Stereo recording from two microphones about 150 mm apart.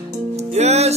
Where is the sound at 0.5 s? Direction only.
45° right (ahead or behind).